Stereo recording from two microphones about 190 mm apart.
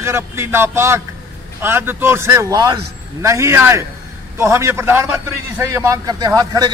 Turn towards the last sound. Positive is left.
turn(degrees=-20)  # may be behind; listen again after turning